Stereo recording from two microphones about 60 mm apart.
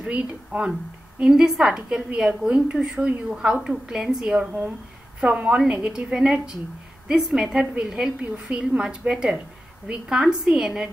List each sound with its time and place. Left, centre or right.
0.0 s a woman's voice: centre